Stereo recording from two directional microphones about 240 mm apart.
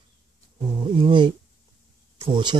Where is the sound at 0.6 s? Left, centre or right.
Centre.